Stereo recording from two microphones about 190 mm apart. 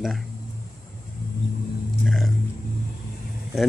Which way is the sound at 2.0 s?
Centre (ahead or behind).